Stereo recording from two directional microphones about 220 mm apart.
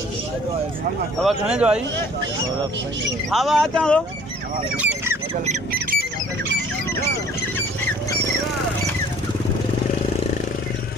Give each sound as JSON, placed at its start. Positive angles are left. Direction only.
{"t": 1.2, "sound": "speech", "side_deg": -5}
{"t": 3.3, "sound": "speech", "side_deg": 0}
{"t": 4.7, "sound": "rodents", "side_deg": -10}
{"t": 5.3, "sound": "speech", "side_deg": -30}